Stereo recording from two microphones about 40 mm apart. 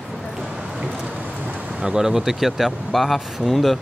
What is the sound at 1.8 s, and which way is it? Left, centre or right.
Speech, centre.